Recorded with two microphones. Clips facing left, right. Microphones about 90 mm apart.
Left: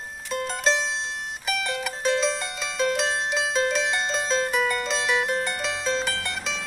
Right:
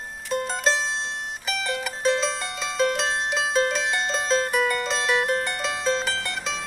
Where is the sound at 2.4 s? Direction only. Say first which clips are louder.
Right 2 dB; 5° left (ahead or behind).